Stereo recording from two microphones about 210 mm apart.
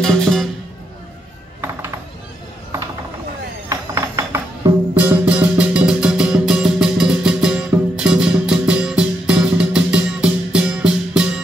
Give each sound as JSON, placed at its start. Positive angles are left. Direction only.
{"t": 0.0, "sound": "music", "side_deg": 5}
{"t": 3.6, "sound": "music", "side_deg": -15}